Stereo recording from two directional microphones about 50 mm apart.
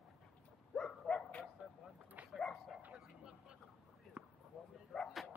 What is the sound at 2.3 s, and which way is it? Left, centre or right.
Bow-wow, centre.